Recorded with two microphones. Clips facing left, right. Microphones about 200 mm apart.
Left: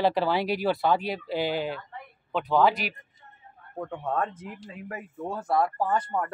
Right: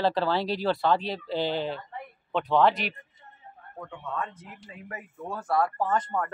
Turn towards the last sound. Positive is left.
turn(degrees=10)  # may be behind; listen again after turning